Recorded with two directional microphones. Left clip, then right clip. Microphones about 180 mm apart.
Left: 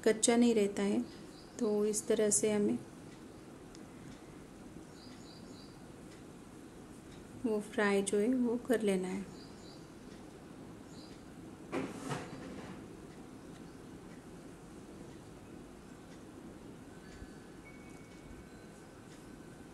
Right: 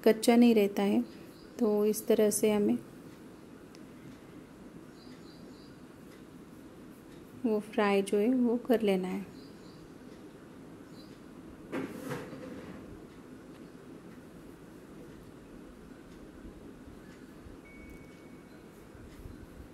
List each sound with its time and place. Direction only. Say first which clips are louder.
0.0 s a woman's voice: right 5 dB; 25° right (ahead or behind)
7.4 s a woman's voice: right 4 dB; 20° right (ahead or behind)